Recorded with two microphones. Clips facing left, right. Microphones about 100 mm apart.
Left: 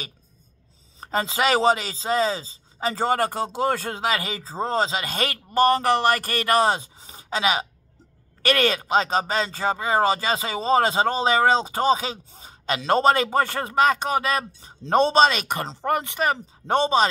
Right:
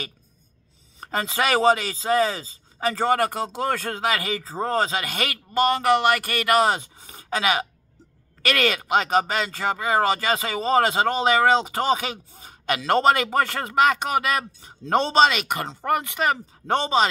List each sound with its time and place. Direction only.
1.0 s speech: 25° left (ahead or behind)
15.1 s speech: 35° left (ahead or behind)